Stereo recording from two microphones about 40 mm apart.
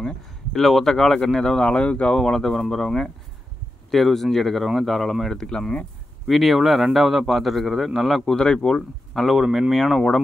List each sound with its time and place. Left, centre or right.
0.0 s speech: centre; by 2.1 s left
2.1 s speech: centre
6.2 s speech: centre
8.4 s speech: left
8.7 s speech: centre
9.5 s speech: centre